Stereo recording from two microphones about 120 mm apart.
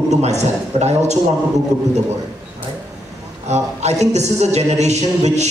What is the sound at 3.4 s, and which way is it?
A man's voice, 70° right (ahead or behind).